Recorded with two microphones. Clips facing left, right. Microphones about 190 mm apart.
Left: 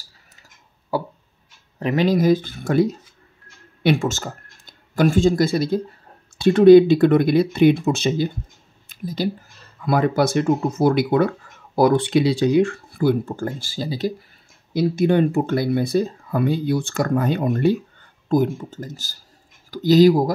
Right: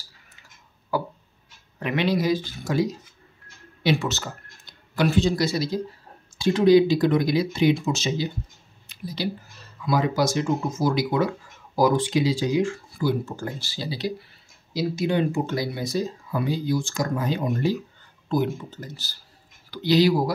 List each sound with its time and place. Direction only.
0.9 s a sound: 30° left (ahead or behind)
1.8 s speech: 40° left (ahead or behind); by 8.3 s 60° left (ahead or behind)
8.8 s a sound: 50° left (ahead or behind)
9.8 s speech: 55° left (ahead or behind)
14.7 s speech: 55° left (ahead or behind)
18.3 s speech: 45° left (ahead or behind)